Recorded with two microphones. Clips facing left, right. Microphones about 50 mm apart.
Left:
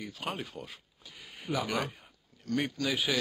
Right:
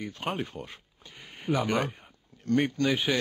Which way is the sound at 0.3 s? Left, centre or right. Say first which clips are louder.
Right 5 dB; centre.